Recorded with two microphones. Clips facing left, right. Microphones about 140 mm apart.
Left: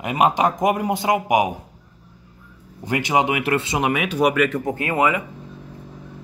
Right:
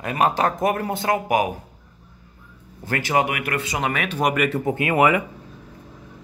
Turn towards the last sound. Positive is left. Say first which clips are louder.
# right 2 dB
turn(degrees=-20)  # may be behind; listen again after turning